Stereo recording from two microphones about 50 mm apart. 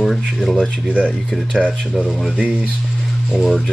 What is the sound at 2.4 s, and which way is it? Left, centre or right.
Speech, right.